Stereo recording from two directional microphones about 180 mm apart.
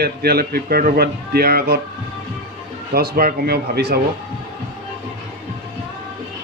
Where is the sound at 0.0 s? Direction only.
60° right (ahead or behind).